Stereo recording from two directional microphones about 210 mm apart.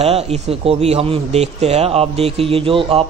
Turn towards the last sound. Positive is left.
turn(degrees=-25)  # may be behind; listen again after turning